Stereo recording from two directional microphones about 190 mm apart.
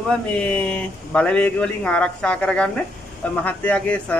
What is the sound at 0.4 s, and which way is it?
Speech, 5° left (ahead or behind).